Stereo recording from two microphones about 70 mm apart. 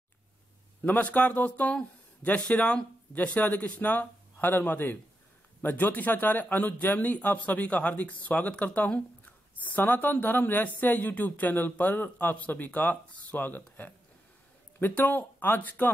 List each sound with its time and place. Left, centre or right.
0.8 s speech: left